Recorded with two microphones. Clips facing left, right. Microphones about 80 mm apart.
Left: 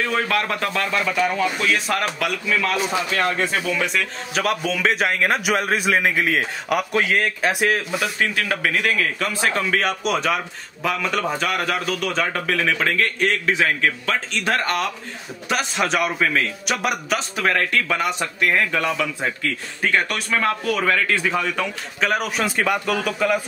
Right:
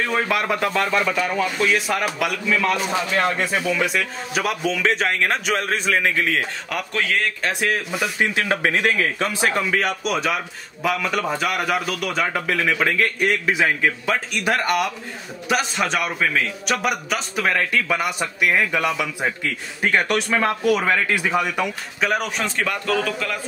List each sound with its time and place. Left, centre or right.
0.1 s a man's voice: centre
8.2 s a man's voice: right
15.4 s a man's voice: centre
22.0 s a man's voice: centre
22.6 s a man's voice: centre